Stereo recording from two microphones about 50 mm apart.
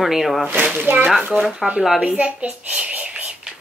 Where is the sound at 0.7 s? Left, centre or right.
Right.